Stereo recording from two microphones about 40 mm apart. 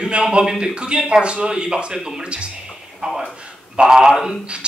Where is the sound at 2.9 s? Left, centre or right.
Centre.